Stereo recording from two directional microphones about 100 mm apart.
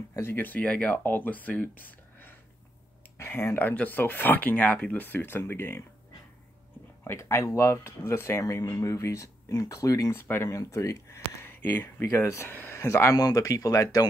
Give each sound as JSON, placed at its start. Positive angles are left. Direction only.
{"t": 0.1, "sound": "speech", "side_deg": 25}
{"t": 7.1, "sound": "speech", "side_deg": 25}